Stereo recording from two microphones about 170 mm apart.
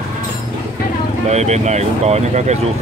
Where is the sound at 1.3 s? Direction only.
40° right (ahead or behind).